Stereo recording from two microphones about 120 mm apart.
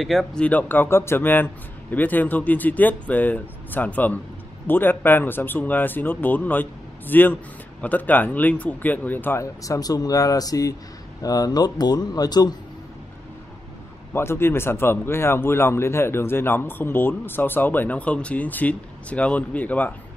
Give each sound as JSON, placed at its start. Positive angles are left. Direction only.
{"t": 0.0, "sound": "speech", "side_deg": 0}
{"t": 14.1, "sound": "speech", "side_deg": 20}